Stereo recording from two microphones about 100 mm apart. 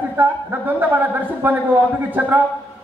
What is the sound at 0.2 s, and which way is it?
A woman's voice, 20° right (ahead or behind).